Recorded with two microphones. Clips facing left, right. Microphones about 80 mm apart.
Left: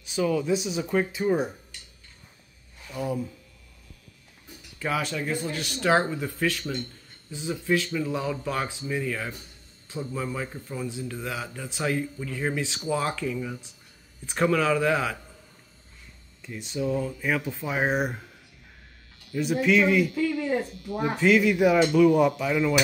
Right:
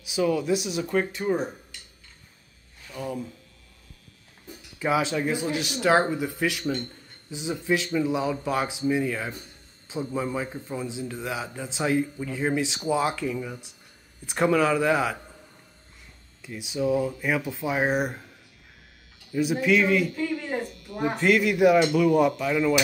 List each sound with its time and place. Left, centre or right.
0.0 s speech: centre
2.9 s speech: centre
4.7 s speech: centre
6.6 s speech: right
7.2 s speech: centre
16.4 s speech: centre
19.4 s speech: centre
20.1 s a sound: right
21.2 s speech: centre